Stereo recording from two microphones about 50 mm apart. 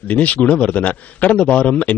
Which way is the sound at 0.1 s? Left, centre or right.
Left.